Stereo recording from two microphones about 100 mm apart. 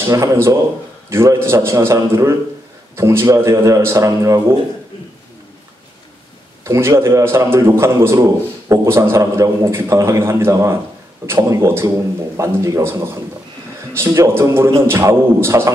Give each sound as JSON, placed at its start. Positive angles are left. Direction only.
{"t": 0.0, "sound": "a man's voice", "side_deg": -30}
{"t": 6.6, "sound": "a man's voice", "side_deg": -30}